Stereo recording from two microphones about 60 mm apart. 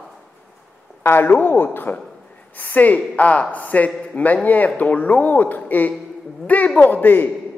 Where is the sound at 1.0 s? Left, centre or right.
Left.